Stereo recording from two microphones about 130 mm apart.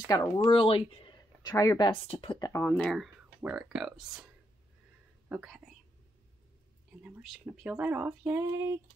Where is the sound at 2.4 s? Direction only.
25° left (ahead or behind).